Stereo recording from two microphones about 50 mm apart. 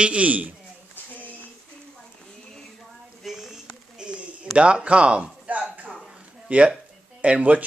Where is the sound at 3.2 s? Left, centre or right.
Centre.